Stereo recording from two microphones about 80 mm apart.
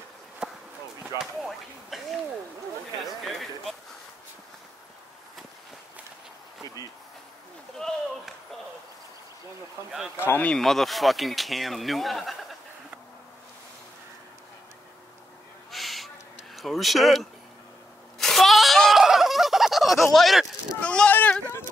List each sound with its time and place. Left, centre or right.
0.4 s basketball bounce: centre
1.1 s speech: centre
7.8 s a sound: centre
10.2 s speech: left
10.5 s speech: centre
15.7 s owl: centre
16.5 s speech: centre
18.2 s a sound: centre
20.8 s speech: centre
21.1 s sheep: left